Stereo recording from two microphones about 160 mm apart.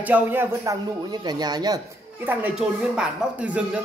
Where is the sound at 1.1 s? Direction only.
25° right (ahead or behind).